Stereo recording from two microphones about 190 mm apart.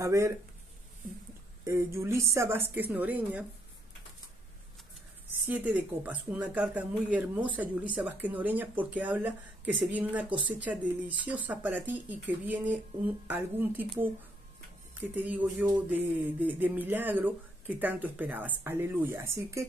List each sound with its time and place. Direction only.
0.0 s speech: 15° right (ahead or behind)
1.6 s speech: 15° right (ahead or behind)
5.5 s speech: 10° right (ahead or behind)
15.0 s speech: 10° right (ahead or behind)